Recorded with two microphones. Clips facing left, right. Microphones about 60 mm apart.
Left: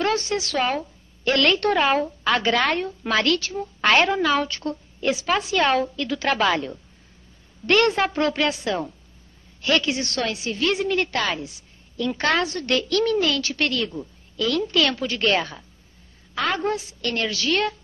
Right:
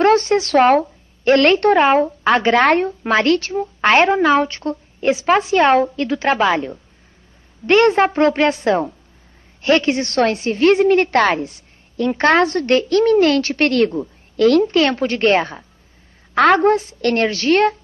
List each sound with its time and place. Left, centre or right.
0.0 s speech: right
1.2 s a woman's voice: right
2.6 s a woman's voice: right
14.7 s a woman's voice: right
16.3 s a woman's voice: right